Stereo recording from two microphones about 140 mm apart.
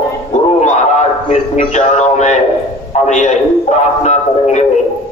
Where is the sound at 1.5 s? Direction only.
55° left (ahead or behind).